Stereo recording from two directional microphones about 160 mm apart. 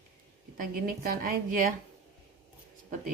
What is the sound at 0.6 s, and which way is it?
Speech, 55° right (ahead or behind).